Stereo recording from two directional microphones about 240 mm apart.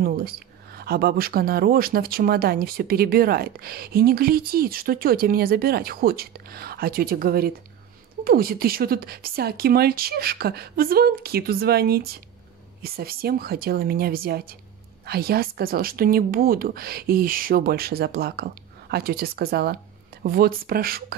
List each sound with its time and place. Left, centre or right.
0.0 s speech: right